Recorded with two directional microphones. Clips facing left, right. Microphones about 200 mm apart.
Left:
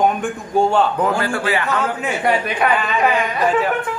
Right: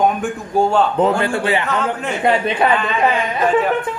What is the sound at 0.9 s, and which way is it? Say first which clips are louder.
A man's voice: right 3 dB; 25° right (ahead or behind).